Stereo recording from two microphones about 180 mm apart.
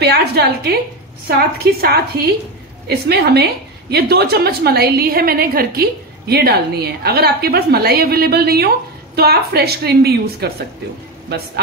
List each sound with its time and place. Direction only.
0.0 s a woman's voice: 65° right (ahead or behind)